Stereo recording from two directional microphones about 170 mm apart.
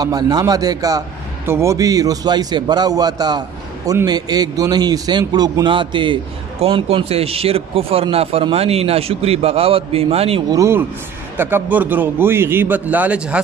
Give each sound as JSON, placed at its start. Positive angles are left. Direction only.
{"t": 0.0, "sound": "a man's voice", "side_deg": -20}
{"t": 10.5, "sound": "a man's voice", "side_deg": -15}